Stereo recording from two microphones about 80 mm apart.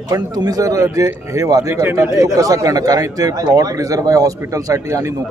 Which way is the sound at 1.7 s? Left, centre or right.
Right.